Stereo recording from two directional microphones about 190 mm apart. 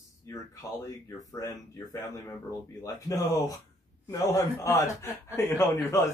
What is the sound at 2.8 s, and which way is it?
Speech, 15° left (ahead or behind).